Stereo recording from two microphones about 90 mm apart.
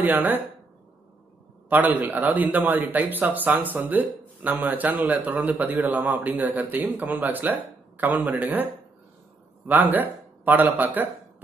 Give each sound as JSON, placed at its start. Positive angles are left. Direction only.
{"t": 0.0, "sound": "a man's voice", "side_deg": -20}
{"t": 1.7, "sound": "a man's voice", "side_deg": -20}
{"t": 9.7, "sound": "a man's voice", "side_deg": -20}